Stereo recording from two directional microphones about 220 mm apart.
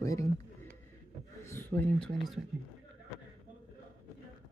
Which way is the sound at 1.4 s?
10° left (ahead or behind).